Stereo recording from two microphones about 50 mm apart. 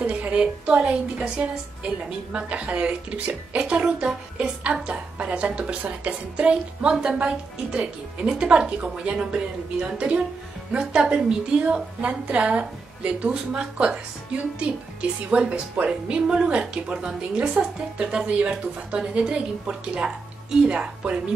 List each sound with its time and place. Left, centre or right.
0.0 s a sound: right
0.4 s a woman's voice: right
8.2 s a woman's voice: centre
11.6 s a woman's voice: right